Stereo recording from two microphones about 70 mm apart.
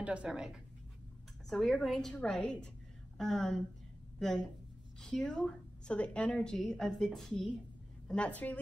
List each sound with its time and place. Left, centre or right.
0.0 s speech: centre
0.3 s speech: centre
1.5 s a woman's voice: centre
8.1 s speech: centre